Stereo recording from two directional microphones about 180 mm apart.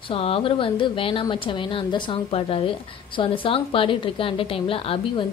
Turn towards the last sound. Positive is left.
turn(degrees=30)  # may be behind; listen again after turning